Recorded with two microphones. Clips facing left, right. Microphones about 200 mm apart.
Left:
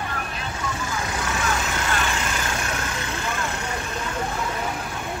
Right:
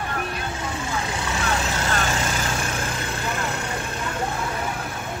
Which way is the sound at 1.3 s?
35° right (ahead or behind).